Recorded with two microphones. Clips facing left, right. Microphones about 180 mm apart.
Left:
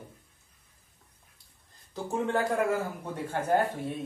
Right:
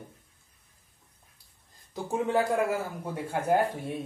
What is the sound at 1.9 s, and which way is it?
Speech, 10° right (ahead or behind).